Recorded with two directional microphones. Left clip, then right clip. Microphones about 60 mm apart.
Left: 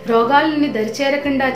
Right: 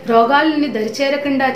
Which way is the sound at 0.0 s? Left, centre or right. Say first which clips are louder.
Right 2 dB; right.